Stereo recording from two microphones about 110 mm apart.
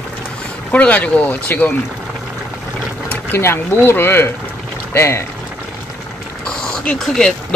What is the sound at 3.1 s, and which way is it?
Speech, 20° left (ahead or behind).